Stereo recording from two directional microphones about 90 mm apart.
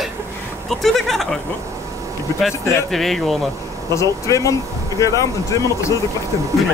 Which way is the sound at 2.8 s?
Centre (ahead or behind).